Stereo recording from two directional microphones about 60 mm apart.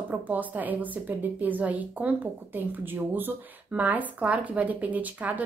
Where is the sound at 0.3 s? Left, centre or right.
Right.